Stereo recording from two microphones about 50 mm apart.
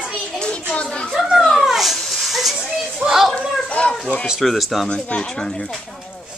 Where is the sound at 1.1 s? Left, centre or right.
Centre.